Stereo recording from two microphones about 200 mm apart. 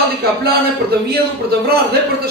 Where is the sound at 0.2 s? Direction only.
50° right (ahead or behind).